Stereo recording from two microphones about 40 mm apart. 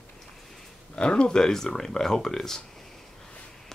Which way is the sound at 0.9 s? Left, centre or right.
Left.